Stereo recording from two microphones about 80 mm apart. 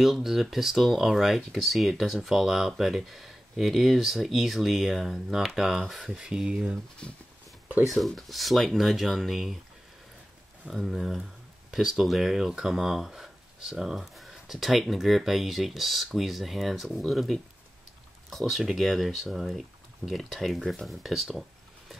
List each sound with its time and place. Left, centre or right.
0.0 s speech: centre
7.9 s speech: centre
10.7 s speech: centre